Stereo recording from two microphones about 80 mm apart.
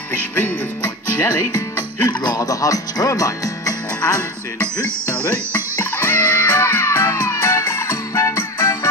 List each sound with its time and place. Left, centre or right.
1.1 s speech: left
2.0 s speech: left
6.0 s music: left